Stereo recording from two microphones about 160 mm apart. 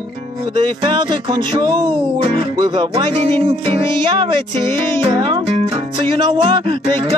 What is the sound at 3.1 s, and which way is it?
Music, 35° right (ahead or behind).